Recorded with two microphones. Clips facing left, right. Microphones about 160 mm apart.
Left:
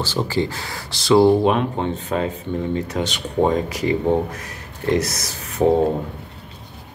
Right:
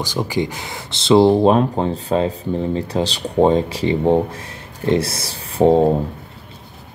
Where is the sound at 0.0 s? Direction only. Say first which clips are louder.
Right 1 dB; 15° right (ahead or behind).